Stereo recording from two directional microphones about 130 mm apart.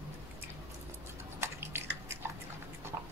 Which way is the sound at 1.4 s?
20° right (ahead or behind).